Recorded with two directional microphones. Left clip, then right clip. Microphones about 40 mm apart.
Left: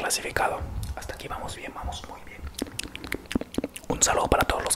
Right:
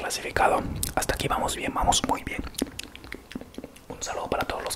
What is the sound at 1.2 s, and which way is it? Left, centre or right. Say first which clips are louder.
Speech: right 8 dB; right.